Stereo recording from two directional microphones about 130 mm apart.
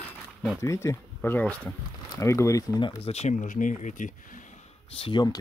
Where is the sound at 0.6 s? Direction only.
20° left (ahead or behind).